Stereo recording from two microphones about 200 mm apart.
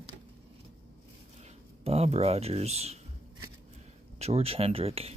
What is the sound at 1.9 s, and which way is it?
Speech, 30° right (ahead or behind).